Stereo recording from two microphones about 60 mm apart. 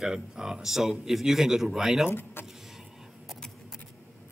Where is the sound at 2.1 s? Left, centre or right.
Left.